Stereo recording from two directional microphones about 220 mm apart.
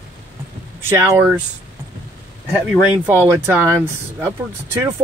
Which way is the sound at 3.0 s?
10° right (ahead or behind).